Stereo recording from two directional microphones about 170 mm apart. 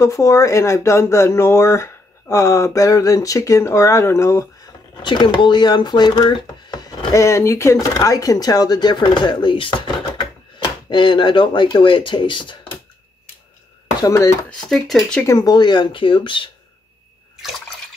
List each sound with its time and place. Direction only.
0.0 s speech: 20° left (ahead or behind)
5.0 s speech: 25° left (ahead or behind)
14.0 s speech: 15° left (ahead or behind)
14.5 s speech: 5° left (ahead or behind)
15.2 s speech: 20° left (ahead or behind)